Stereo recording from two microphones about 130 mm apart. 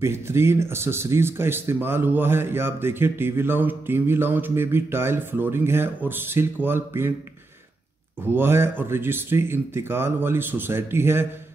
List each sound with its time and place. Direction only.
0.0 s speech: 20° right (ahead or behind)
8.3 s speech: 20° right (ahead or behind)